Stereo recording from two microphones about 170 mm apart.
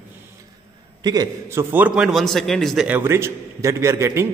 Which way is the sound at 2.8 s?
15° right (ahead or behind).